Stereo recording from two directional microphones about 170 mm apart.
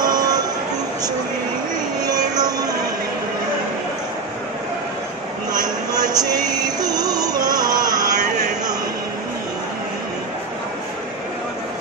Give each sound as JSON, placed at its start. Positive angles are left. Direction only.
{"t": 0.0, "sound": "a sound", "side_deg": -25}
{"t": 2.0, "sound": "music", "side_deg": -25}
{"t": 5.5, "sound": "music", "side_deg": -25}